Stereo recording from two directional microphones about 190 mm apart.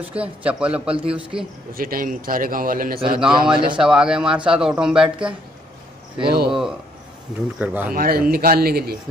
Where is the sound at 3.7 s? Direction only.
5° right (ahead or behind).